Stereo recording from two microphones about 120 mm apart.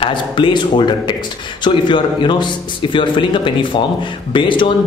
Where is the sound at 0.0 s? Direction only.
40° left (ahead or behind).